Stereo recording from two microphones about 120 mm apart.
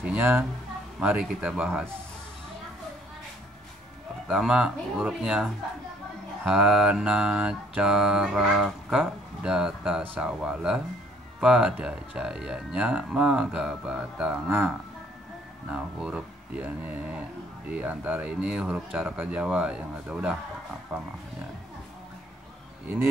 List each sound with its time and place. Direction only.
0.0 s speech: 15° right (ahead or behind)
4.3 s mantra: 5° right (ahead or behind)
11.3 s speech: 5° right (ahead or behind)
14.5 s speech: 20° right (ahead or behind)
15.7 s speech: 10° right (ahead or behind)
20.9 s mantra: 5° right (ahead or behind)